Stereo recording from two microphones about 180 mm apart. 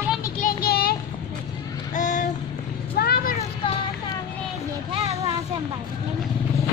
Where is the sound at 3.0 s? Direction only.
60° left (ahead or behind).